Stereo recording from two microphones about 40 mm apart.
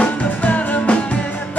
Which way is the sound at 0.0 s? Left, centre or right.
Left.